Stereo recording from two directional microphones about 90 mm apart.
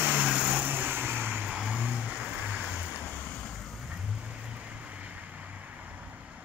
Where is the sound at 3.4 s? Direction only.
10° left (ahead or behind).